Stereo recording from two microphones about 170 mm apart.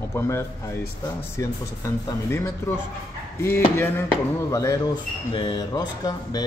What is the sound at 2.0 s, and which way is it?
Speech, 15° left (ahead or behind).